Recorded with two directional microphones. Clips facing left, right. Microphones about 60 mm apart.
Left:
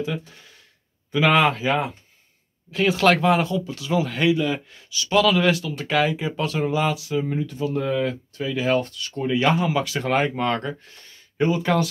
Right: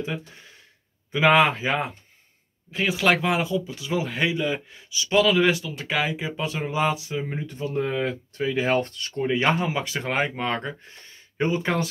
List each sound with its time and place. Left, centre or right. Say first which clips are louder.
0.0 s speech: left 3 dB; right
2.7 s speech: left 4 dB; centre; by 9.1 s right
9.2 s speech: left 2 dB; right; by 10.7 s centre
10.8 s speech: right 1 dB; right